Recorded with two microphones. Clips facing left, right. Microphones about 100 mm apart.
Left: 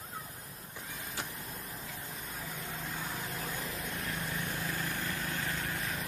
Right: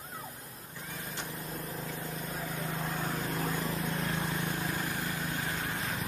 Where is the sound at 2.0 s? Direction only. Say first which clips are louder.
Right 5 dB; 50° right (ahead or behind); by 4.1 s 30° right (ahead or behind).